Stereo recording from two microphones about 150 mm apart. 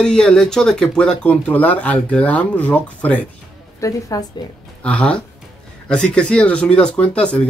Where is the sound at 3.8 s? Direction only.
25° left (ahead or behind).